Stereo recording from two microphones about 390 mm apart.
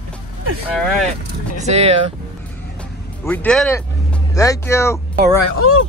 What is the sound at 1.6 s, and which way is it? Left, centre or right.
Speech, centre.